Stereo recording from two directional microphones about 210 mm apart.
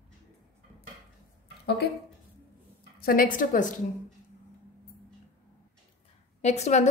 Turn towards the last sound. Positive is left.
turn(degrees=35)  # may be behind; listen again after turning